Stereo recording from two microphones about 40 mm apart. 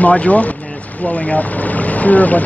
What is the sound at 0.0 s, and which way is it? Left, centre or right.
Speech, left.